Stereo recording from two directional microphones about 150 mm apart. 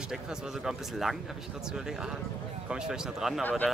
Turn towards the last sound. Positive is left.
turn(degrees=10)  # may be behind; listen again after turning